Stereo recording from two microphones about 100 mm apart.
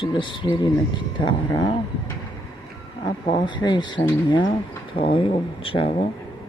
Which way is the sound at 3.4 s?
50° left (ahead or behind).